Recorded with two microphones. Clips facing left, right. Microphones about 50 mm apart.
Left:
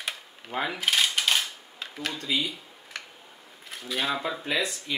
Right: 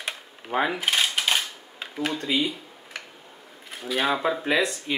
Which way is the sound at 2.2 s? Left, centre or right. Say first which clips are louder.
Right 3 dB; right.